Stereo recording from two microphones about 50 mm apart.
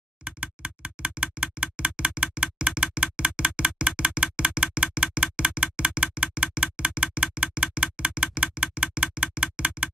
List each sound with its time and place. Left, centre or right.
0.2 s a sound: centre
1.9 s typewriter: centre
3.3 s music: centre
7.3 s typing: centre
8.7 s music: centre